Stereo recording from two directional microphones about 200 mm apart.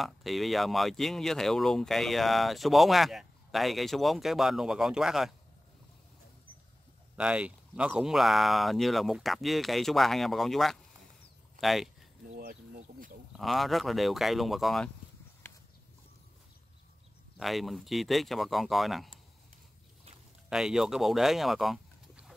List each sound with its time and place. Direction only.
0.0 s speech: centre (ahead or behind)
7.2 s speech: 5° right (ahead or behind)
12.4 s a sound: 50° right (ahead or behind)
13.4 s speech: centre (ahead or behind)
15.4 s a sound: 10° left (ahead or behind)
17.4 s speech: centre (ahead or behind)
20.4 s speech: 5° right (ahead or behind)